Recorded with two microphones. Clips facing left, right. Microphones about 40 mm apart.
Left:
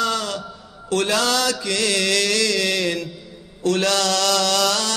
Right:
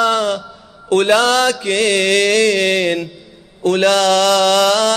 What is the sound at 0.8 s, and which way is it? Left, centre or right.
Mantra, right.